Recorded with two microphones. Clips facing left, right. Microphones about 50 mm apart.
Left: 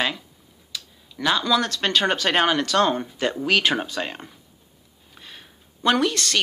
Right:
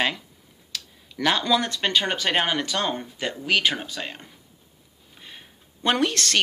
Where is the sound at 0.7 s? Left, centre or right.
Right.